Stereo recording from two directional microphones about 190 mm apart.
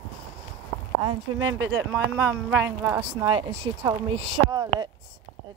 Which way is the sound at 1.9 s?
10° right (ahead or behind).